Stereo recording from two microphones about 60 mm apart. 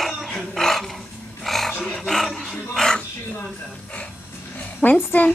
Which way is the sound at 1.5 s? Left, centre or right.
Centre.